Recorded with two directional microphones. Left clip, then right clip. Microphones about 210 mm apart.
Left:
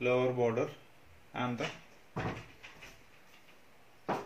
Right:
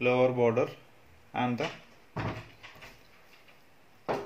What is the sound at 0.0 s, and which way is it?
Speech, 40° right (ahead or behind).